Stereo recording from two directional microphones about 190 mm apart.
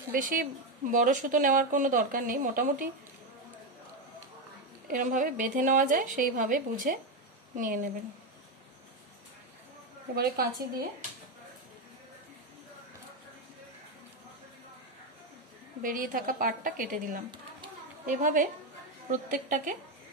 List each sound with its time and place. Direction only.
0.1 s a woman's voice: 45° right (ahead or behind)
4.9 s a woman's voice: 45° right (ahead or behind)
10.1 s a woman's voice: 55° right (ahead or behind)
15.8 s a woman's voice: 45° right (ahead or behind)